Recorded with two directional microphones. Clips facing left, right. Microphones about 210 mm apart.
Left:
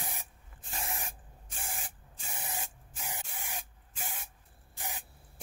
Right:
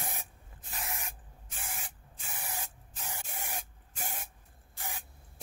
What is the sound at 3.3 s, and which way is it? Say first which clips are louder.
Spray: right 2 dB; 45° right (ahead or behind).